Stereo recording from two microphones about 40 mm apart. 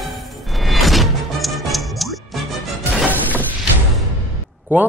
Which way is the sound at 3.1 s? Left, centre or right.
Left.